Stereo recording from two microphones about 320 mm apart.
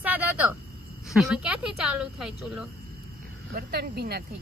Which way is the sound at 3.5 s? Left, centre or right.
Right.